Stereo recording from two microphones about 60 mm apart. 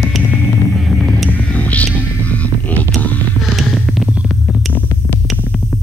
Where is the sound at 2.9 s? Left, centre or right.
Left.